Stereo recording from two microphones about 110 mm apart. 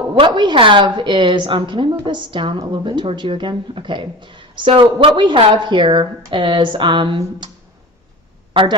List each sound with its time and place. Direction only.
0.2 s speech: 45° right (ahead or behind)